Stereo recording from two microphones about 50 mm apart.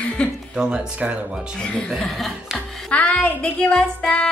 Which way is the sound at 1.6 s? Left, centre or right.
Centre.